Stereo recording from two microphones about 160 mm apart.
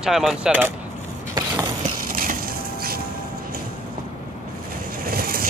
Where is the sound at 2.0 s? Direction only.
65° right (ahead or behind).